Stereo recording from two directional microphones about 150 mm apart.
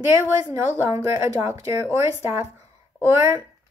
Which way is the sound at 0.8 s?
20° right (ahead or behind).